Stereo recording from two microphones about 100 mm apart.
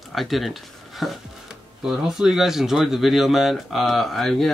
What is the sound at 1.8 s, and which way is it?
Speech, 5° right (ahead or behind).